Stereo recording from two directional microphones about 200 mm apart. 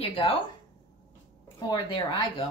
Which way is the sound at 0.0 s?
30° left (ahead or behind).